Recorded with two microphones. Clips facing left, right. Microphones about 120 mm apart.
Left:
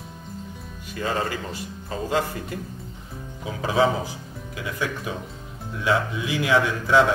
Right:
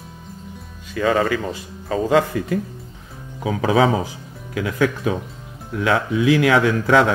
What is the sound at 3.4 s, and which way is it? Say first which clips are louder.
A man's voice: right 5 dB; 90° right.